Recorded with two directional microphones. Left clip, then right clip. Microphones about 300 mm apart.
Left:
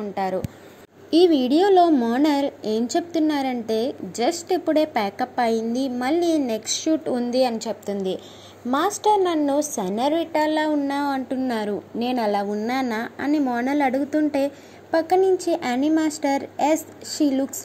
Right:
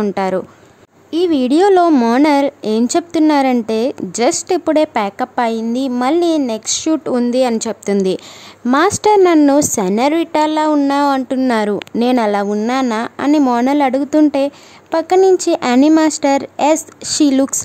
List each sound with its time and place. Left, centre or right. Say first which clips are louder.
0.0 s a woman's voice: right 8 dB; right
1.6 s a woman's voice: right 6 dB; right